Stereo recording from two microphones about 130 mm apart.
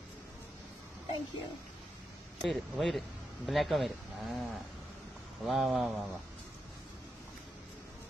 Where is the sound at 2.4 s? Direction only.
5° left (ahead or behind).